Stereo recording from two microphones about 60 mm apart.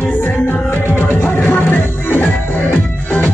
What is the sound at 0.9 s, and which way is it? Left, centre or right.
Music, left.